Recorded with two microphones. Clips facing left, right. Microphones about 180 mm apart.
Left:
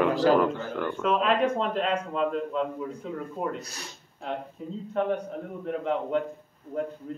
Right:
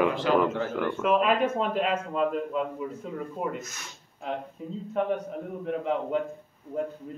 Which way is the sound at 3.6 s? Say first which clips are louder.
Left 1 dB; 35° left (ahead or behind).